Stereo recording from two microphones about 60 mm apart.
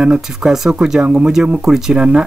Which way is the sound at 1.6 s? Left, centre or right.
Centre.